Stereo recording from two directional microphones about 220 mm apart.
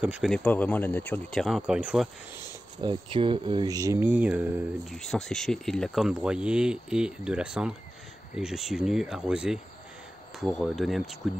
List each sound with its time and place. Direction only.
0.0 s speech: 5° right (ahead or behind)
2.8 s speech: 25° right (ahead or behind); by 11.1 s centre (ahead or behind)